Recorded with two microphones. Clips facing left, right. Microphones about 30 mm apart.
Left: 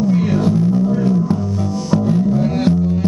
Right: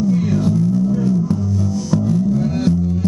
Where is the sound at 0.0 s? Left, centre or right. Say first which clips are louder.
Left 1 dB; left.